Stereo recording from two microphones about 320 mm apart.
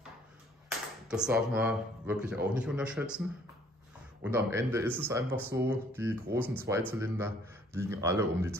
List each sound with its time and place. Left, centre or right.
0.7 s speech: centre
4.2 s speech: centre